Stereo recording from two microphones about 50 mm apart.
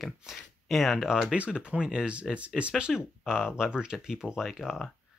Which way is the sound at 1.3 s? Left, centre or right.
Right.